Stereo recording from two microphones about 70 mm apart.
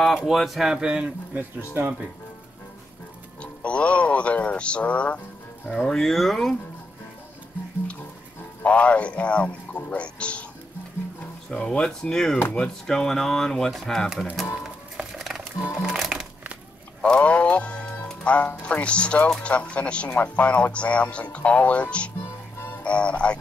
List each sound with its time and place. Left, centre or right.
0.0 s speech: centre
1.3 s speech: right
3.6 s music: centre
5.9 s speech: centre
8.6 s speech: centre
11.5 s speech: centre
15.1 s music: centre
17.0 s music: centre
18.2 s speech: centre